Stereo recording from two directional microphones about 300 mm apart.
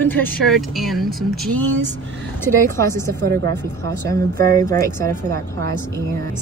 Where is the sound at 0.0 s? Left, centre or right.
Centre.